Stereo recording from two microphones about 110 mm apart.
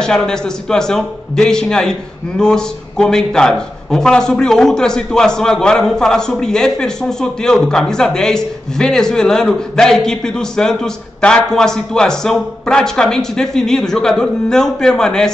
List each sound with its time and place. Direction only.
0.0 s a man's voice: 5° left (ahead or behind)